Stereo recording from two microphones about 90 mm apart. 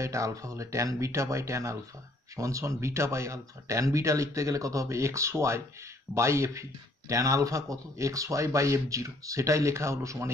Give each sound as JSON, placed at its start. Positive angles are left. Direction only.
{"t": 0.0, "sound": "speech", "side_deg": -35}